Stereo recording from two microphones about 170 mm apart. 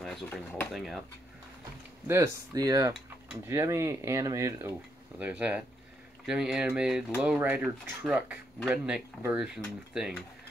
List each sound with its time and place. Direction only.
0.0 s speech: 5° left (ahead or behind)
2.0 s speech: 20° right (ahead or behind)
5.2 s speech: 5° right (ahead or behind)